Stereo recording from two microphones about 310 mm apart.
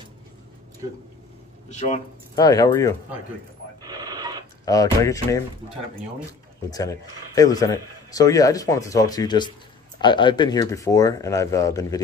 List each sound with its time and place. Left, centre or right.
1.7 s speech: left
2.3 s a man's voice: centre
3.8 s a sound: centre
4.6 s a man's voice: centre
6.7 s a man's voice: centre